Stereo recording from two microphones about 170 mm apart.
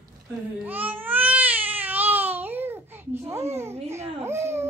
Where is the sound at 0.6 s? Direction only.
10° right (ahead or behind).